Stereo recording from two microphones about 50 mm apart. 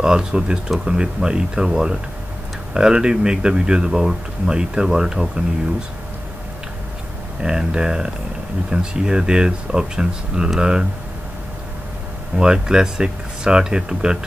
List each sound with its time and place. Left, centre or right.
0.0 s speech: centre
7.4 s speech: centre
12.4 s speech: centre